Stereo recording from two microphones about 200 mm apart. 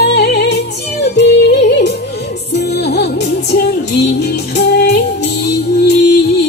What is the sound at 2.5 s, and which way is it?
Music, 55° left (ahead or behind).